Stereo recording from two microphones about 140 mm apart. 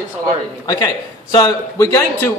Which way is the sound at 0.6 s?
25° left (ahead or behind).